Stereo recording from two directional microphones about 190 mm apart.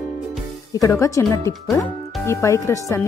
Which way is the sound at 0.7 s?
15° left (ahead or behind).